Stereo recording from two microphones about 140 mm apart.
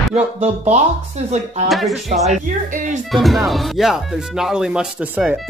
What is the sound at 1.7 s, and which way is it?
Speech, centre (ahead or behind).